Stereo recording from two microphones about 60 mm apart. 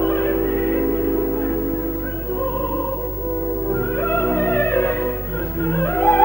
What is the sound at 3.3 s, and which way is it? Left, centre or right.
Music, left.